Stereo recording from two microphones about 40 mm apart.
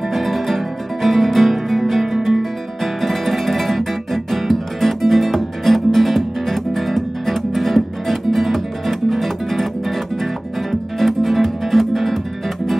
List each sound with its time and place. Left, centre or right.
0.1 s music: centre
2.8 s guitar: centre